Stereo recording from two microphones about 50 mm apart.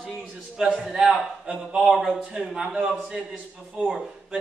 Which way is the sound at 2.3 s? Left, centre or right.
Centre.